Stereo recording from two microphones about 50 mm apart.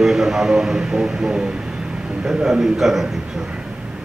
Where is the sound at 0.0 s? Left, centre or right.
Centre.